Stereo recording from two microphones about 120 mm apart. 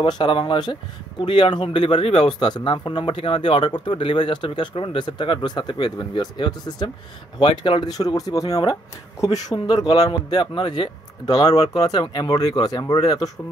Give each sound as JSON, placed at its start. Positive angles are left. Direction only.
{"t": 0.0, "sound": "speech", "side_deg": 45}
{"t": 2.2, "sound": "speech", "side_deg": 40}